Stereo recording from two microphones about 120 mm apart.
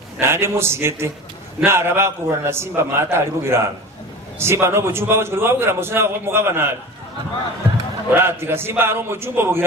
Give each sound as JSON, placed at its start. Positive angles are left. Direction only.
{"t": 0.2, "sound": "a man's voice", "side_deg": -20}
{"t": 8.1, "sound": "a man's voice", "side_deg": -20}